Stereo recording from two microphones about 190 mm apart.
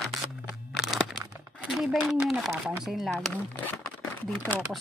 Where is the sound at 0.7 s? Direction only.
Centre (ahead or behind).